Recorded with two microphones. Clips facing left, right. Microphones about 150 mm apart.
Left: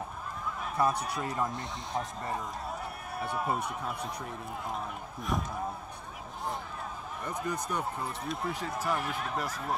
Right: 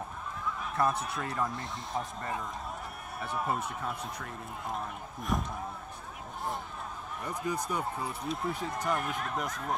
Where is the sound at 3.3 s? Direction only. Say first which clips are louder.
Even; centre (ahead or behind).